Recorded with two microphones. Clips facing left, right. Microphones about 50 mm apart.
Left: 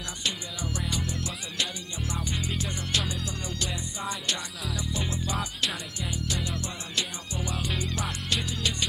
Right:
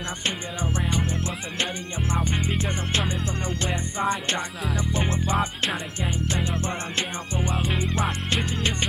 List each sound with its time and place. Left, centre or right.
0.2 s music: right